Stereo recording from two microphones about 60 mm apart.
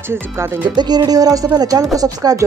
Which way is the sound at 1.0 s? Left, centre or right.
Right.